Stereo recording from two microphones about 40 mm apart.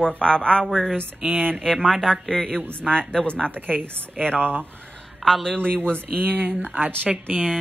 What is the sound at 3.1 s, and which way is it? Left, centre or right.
Speech, left.